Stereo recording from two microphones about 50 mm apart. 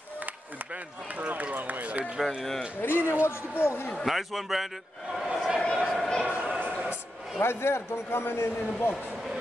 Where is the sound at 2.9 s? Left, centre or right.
Right.